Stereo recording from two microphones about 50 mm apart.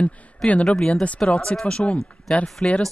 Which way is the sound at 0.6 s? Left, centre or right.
Centre.